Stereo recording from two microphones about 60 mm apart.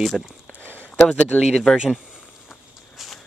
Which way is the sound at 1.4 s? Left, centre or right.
Centre.